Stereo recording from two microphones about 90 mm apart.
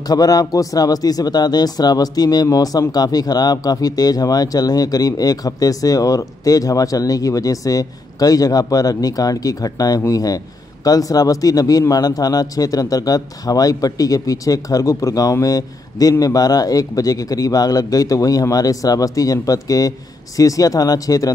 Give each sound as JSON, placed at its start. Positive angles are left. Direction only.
{"t": 0.1, "sound": "a man's voice", "side_deg": 45}